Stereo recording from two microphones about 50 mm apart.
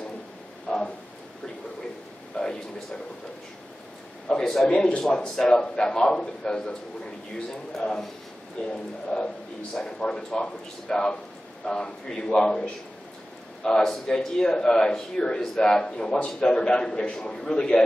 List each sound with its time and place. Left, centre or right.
0.7 s a sound: centre
2.3 s a sound: centre
4.3 s a man's voice: centre
4.6 s a man's voice: centre
8.7 s a man's voice: left
13.7 s a man's voice: centre